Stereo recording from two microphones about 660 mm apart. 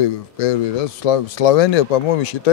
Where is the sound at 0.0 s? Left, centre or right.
Left.